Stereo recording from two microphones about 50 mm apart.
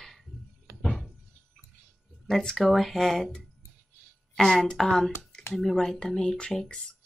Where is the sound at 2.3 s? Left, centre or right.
Centre.